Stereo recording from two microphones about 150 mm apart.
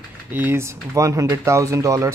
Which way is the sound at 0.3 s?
15° right (ahead or behind).